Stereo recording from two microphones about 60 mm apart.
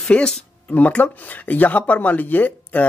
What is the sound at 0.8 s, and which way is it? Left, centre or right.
Speech, left.